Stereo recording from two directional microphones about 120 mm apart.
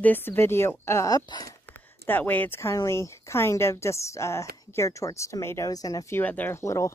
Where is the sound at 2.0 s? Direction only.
15° left (ahead or behind).